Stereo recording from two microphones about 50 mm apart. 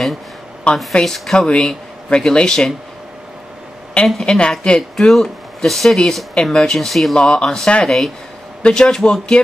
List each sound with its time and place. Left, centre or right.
0.7 s a woman's voice: left
1.0 s speech: centre
3.9 s a woman's voice: centre
4.9 s speech: centre
7.2 s speech: centre
8.6 s speech: centre